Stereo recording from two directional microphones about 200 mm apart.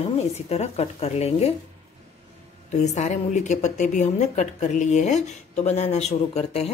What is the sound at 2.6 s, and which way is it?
A woman's voice, 35° left (ahead or behind).